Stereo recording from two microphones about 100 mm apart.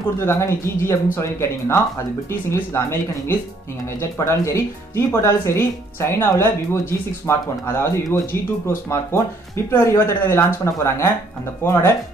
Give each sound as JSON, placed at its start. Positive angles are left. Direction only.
{"t": 0.2, "sound": "speech", "side_deg": 30}